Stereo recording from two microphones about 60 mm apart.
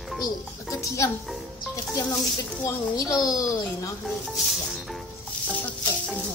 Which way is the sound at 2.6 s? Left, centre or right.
Left.